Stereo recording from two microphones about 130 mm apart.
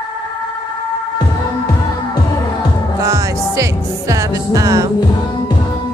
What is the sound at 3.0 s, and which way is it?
Music, 25° right (ahead or behind).